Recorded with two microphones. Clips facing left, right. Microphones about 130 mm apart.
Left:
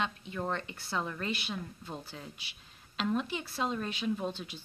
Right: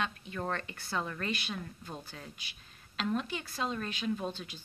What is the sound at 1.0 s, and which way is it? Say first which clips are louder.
Speech: left 1 dB; 10° left (ahead or behind).